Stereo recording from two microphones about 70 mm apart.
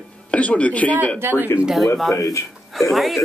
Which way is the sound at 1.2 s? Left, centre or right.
Right.